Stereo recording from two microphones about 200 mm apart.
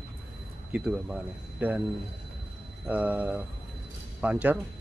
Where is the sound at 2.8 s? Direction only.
5° right (ahead or behind).